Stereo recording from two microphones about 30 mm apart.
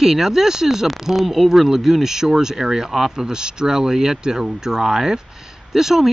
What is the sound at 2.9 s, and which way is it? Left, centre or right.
Speech, centre.